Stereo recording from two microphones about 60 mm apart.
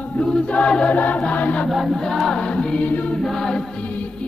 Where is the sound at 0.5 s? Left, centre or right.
Centre.